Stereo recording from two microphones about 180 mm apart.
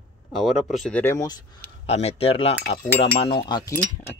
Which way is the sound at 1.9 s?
35° left (ahead or behind).